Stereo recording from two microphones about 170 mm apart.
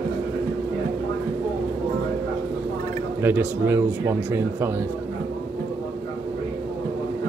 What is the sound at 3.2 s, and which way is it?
Speech, 10° right (ahead or behind).